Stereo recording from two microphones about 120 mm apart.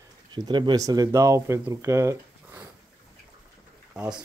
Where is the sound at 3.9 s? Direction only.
5° right (ahead or behind).